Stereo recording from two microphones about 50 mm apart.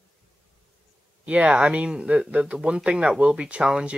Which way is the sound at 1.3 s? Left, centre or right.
Right.